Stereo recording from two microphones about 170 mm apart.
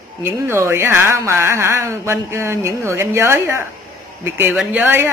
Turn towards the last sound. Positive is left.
turn(degrees=-10)  # may be behind; listen again after turning